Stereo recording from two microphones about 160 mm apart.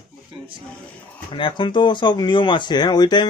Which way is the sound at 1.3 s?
30° left (ahead or behind).